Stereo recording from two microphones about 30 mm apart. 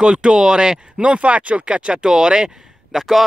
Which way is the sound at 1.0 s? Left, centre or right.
Right.